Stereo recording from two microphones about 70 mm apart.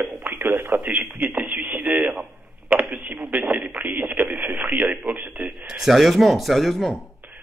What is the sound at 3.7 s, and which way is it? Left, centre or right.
Radio, right.